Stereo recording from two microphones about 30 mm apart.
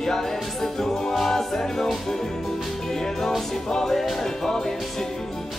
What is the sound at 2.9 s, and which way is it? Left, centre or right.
Music, centre.